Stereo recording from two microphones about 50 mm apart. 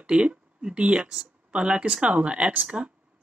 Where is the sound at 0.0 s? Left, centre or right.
Right.